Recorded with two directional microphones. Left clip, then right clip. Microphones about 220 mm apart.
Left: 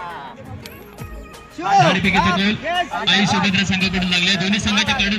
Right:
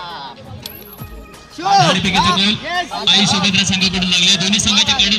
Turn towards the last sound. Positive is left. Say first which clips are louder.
# right 5 dB
turn(degrees=40)  # may be behind; listen again after turning